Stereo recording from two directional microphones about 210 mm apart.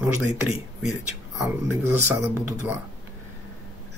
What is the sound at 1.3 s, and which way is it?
Speech, 15° right (ahead or behind).